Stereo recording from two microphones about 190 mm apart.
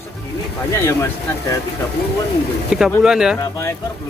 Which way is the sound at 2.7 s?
5° right (ahead or behind).